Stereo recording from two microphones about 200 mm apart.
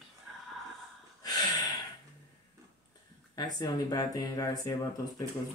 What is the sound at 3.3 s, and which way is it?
Speech, 20° left (ahead or behind).